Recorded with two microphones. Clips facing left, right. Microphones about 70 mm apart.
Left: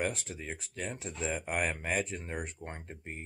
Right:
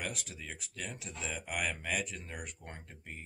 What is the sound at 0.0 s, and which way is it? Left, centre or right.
Speech, left.